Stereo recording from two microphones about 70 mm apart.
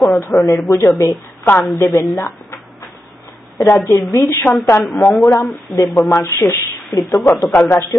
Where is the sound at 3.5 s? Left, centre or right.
Left.